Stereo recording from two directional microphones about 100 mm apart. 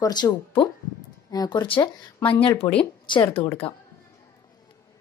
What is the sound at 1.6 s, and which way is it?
Speech, 60° left (ahead or behind).